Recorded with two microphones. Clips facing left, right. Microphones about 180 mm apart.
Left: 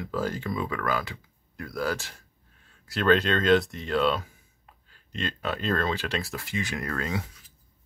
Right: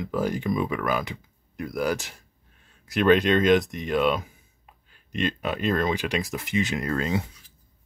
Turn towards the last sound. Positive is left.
turn(degrees=-20)  # may be behind; listen again after turning